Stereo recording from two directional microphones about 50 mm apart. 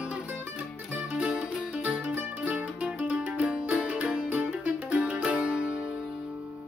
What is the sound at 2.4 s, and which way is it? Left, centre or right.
Music, right.